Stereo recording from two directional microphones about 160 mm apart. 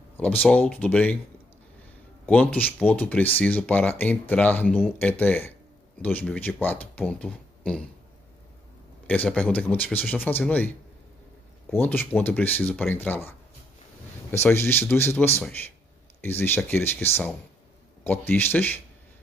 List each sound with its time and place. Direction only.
0.2 s speech: 10° left (ahead or behind)
2.2 s speech: 10° left (ahead or behind)
9.0 s speech: 10° left (ahead or behind)
11.7 s speech: 15° left (ahead or behind)
14.3 s speech: 15° left (ahead or behind)